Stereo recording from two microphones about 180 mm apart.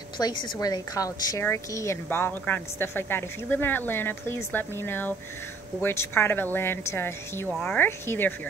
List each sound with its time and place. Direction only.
0.2 s a woman's voice: 25° left (ahead or behind)